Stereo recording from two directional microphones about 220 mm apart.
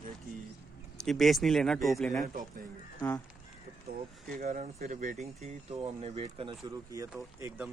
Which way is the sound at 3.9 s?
40° right (ahead or behind).